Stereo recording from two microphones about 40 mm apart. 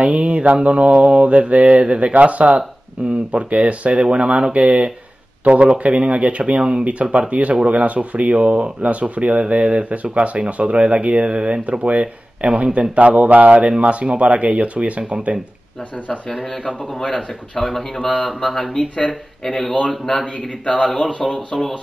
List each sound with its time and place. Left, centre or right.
0.0 s mantra: right
2.1 s speech: right
3.3 s mantra: right
5.4 s speech: right
5.8 s mantra: right
6.8 s speech: right
11.2 s mantra: right
12.9 s speech: right
17.0 s speech: centre
18.8 s speech: centre
20.6 s speech: left
21.2 s speech: centre